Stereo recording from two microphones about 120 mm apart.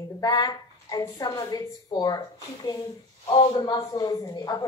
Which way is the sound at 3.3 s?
45° left (ahead or behind).